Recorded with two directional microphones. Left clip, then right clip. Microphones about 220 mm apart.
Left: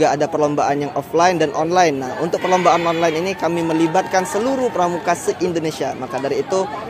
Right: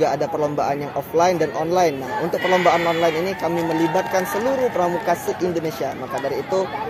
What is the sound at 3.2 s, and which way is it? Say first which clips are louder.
A man's voice: left 2 dB; 45° left (ahead or behind).